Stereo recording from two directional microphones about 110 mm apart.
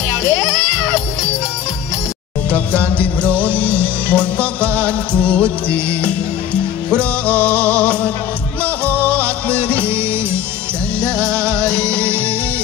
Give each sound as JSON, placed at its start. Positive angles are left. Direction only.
{"t": 3.3, "sound": "music", "side_deg": 10}
{"t": 11.0, "sound": "music", "side_deg": -25}